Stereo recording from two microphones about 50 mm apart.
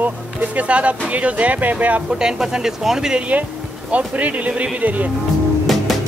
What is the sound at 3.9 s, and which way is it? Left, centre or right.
Speech, right.